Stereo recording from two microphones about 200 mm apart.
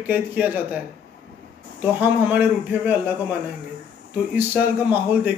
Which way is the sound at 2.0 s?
10° right (ahead or behind).